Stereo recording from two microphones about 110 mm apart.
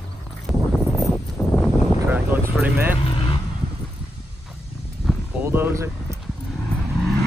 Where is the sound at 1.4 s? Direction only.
10° left (ahead or behind).